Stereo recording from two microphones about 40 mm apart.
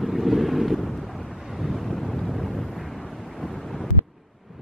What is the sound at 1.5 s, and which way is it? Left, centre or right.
Vehicle, centre.